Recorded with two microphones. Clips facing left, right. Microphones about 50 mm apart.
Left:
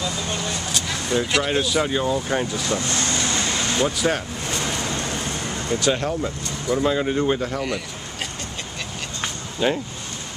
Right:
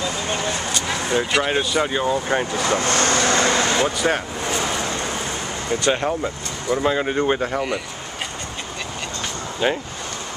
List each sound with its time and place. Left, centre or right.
0.0 s a sound: right
0.8 s vehicle: right
1.3 s speech: centre
2.6 s vehicle: right
4.0 s speech: centre
5.9 s speech: centre
9.6 s speech: centre